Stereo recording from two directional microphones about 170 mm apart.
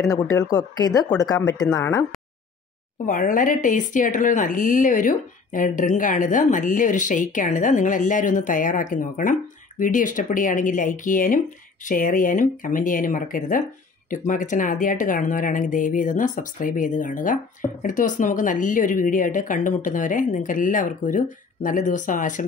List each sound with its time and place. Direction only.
0.1 s speech: 20° left (ahead or behind)
3.1 s a woman's voice: 50° left (ahead or behind)